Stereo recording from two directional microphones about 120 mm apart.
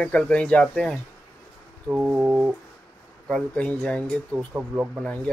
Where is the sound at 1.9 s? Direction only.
15° right (ahead or behind).